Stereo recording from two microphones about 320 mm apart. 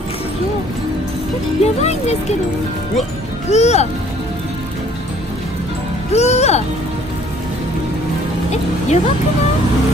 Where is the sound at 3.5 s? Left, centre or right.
Left.